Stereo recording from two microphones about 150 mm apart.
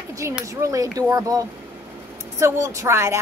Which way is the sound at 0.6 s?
20° right (ahead or behind).